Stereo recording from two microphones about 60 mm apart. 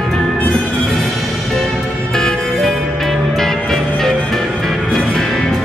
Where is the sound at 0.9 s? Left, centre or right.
Centre.